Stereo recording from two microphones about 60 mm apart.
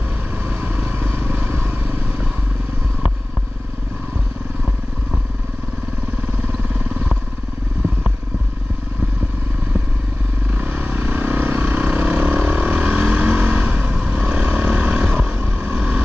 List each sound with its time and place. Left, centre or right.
0.5 s vehicle: right
6.4 s vehicle: right
10.6 s vehicle: right